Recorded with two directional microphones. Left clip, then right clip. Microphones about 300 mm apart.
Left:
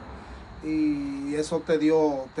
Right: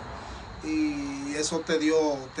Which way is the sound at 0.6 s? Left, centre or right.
Centre.